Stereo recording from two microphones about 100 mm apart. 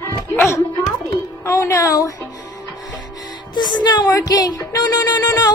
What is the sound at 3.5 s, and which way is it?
A child's voice, 45° left (ahead or behind).